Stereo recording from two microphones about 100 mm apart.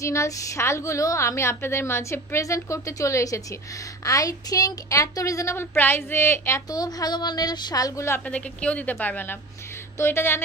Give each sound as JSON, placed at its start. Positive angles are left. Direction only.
{"t": 0.0, "sound": "a woman's voice", "side_deg": 30}
{"t": 6.7, "sound": "speech", "side_deg": 40}
{"t": 8.3, "sound": "a woman's voice", "side_deg": 10}